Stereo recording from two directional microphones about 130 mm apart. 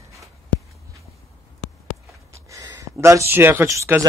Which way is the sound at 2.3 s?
25° right (ahead or behind).